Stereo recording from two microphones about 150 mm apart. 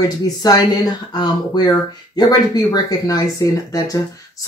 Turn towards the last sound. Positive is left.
turn(degrees=25)  # may be behind; listen again after turning